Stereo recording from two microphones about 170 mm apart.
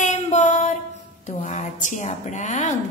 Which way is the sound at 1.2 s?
45° left (ahead or behind).